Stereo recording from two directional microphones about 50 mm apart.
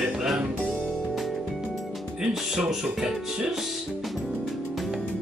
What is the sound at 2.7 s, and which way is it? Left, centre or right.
Speech, centre.